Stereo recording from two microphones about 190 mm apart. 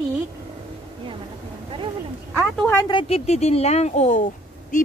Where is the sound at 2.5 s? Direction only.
10° left (ahead or behind).